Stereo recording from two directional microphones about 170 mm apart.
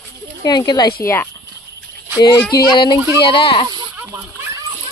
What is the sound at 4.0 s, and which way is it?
Splash, 20° right (ahead or behind).